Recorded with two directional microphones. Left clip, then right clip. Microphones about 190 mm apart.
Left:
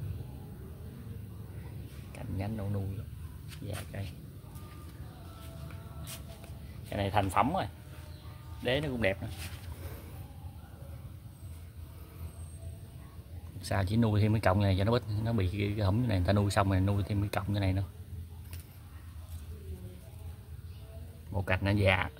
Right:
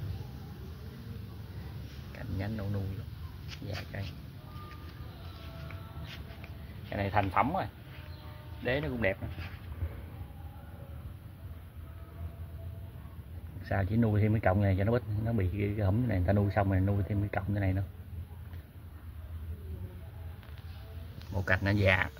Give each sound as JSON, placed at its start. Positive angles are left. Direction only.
{"t": 2.1, "sound": "speech", "side_deg": 10}
{"t": 6.9, "sound": "speech", "side_deg": 15}
{"t": 13.6, "sound": "speech", "side_deg": 10}
{"t": 21.3, "sound": "speech", "side_deg": 5}